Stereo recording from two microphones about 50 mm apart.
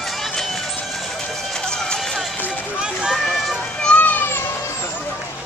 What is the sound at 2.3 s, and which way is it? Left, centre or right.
Run, left.